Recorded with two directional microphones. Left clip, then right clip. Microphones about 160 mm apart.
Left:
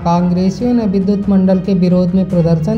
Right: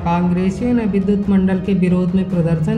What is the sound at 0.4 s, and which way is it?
A woman's voice, 40° left (ahead or behind).